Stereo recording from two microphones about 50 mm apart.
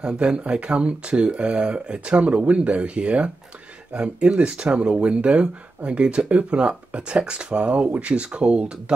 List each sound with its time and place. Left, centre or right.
0.0 s speech: centre